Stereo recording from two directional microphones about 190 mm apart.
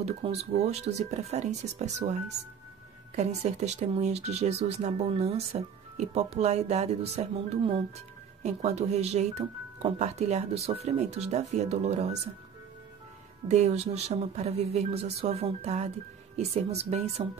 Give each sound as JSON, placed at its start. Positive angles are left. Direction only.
{"t": 0.0, "sound": "speech", "side_deg": -35}
{"t": 3.2, "sound": "speech", "side_deg": -35}
{"t": 13.5, "sound": "speech", "side_deg": -35}